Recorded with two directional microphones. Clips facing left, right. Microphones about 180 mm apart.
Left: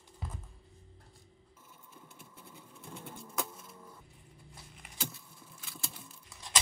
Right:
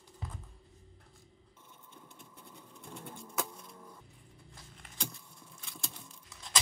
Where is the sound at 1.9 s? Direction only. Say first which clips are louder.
Even; 5° left (ahead or behind).